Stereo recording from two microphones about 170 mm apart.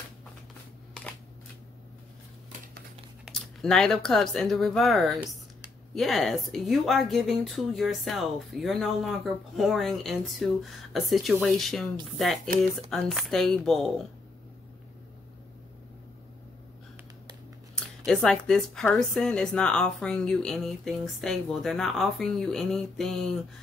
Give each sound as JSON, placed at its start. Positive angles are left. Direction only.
{"t": 3.3, "sound": "speech", "side_deg": 5}
{"t": 18.0, "sound": "speech", "side_deg": 5}